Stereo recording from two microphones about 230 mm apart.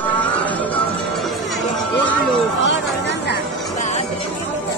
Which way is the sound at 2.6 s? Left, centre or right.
Left.